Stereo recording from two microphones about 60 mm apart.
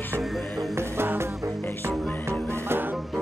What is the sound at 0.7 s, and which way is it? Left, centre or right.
Music, right.